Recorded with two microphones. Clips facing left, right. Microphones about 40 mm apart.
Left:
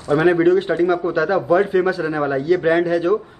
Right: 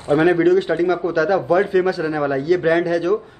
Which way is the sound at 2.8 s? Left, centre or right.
Centre.